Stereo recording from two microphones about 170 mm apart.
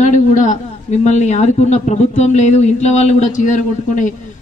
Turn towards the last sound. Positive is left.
turn(degrees=50)  # may be behind; listen again after turning